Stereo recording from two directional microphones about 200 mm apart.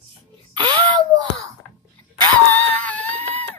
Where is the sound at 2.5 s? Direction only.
5° left (ahead or behind).